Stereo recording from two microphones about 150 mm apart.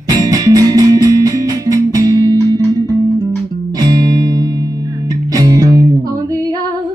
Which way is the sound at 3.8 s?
25° right (ahead or behind).